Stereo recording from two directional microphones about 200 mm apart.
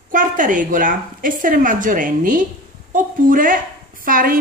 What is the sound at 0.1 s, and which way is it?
A woman's voice, 40° right (ahead or behind).